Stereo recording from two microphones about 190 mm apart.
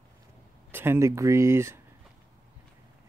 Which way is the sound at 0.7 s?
10° right (ahead or behind).